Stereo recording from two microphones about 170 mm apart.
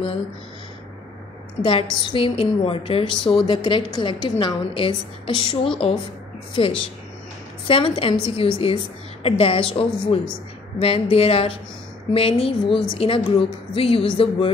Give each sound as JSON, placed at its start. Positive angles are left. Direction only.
{"t": 1.6, "sound": "a woman's voice", "side_deg": 30}